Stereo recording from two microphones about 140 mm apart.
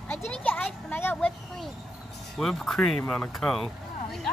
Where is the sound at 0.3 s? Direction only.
10° left (ahead or behind).